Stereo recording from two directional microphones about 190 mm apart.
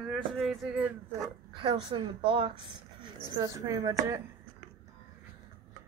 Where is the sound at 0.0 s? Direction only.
Centre (ahead or behind).